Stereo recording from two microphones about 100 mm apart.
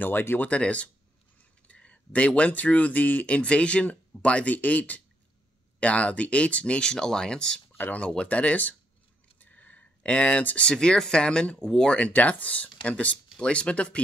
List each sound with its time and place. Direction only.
0.0 s speech: 20° left (ahead or behind)